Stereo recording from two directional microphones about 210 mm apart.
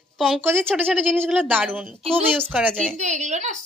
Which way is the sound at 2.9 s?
35° right (ahead or behind).